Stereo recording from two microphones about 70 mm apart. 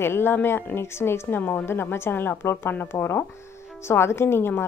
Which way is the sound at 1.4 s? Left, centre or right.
Left.